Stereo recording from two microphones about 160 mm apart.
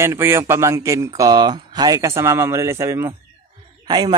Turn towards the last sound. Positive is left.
turn(degrees=-25)  # may be behind; listen again after turning